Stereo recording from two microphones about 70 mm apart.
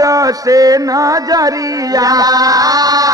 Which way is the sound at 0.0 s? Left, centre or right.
Right.